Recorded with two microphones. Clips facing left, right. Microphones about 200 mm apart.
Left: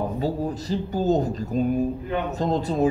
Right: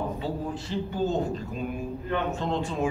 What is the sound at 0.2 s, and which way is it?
A man's voice, 40° left (ahead or behind).